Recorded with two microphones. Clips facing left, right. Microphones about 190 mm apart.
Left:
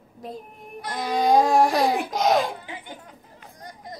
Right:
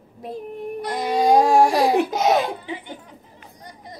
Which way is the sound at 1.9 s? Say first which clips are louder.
Right 3 dB; 5° right (ahead or behind).